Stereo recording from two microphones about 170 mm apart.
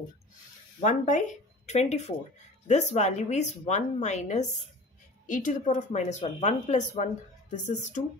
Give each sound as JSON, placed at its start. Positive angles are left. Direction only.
{"t": 0.8, "sound": "speech", "side_deg": 45}